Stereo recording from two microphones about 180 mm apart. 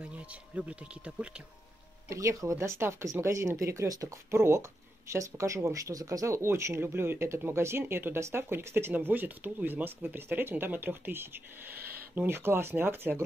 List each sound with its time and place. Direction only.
0.0 s speech: 5° right (ahead or behind)
2.0 s speech: 15° right (ahead or behind)